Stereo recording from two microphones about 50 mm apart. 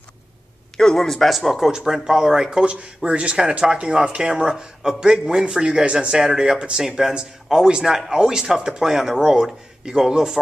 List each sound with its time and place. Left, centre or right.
0.7 s speech: centre
2.6 s speech: right